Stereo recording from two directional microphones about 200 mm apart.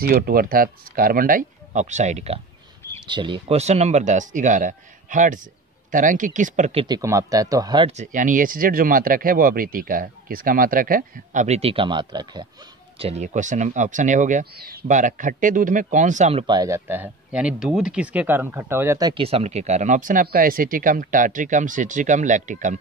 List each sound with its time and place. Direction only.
0.3 s speech: 45° right (ahead or behind); by 7.0 s 30° right (ahead or behind)
7.0 s speech: 15° right (ahead or behind)
7.9 s speech: 40° right (ahead or behind); by 12.4 s 20° right (ahead or behind)
13.0 s speech: 35° right (ahead or behind)